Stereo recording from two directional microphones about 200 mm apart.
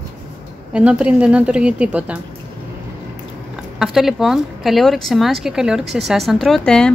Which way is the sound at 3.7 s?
Centre (ahead or behind).